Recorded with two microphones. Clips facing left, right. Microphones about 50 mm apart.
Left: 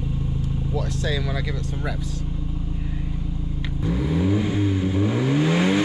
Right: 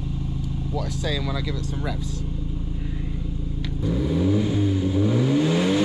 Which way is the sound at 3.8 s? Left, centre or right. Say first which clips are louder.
Even; centre.